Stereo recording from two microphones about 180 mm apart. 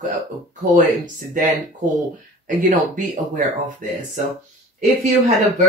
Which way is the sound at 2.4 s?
45° right (ahead or behind).